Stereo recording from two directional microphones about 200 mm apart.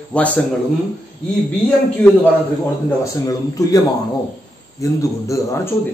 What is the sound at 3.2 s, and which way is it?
Speech, 15° left (ahead or behind).